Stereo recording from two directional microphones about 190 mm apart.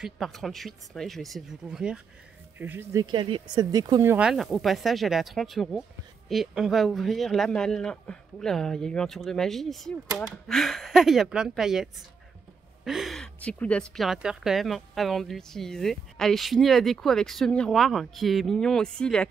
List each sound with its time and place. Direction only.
0.0 s a woman's voice: centre (ahead or behind)
4.3 s a woman's voice: centre (ahead or behind)